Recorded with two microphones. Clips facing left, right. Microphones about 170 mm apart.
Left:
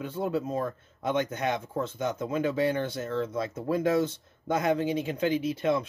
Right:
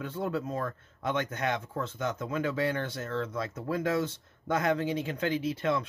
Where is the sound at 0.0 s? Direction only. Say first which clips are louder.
Left 3 dB; 15° left (ahead or behind).